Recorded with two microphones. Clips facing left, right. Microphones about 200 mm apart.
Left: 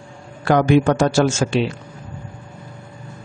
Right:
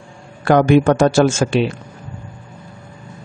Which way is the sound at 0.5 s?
50° right (ahead or behind).